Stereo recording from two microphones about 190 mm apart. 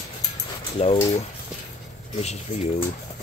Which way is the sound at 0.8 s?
35° left (ahead or behind).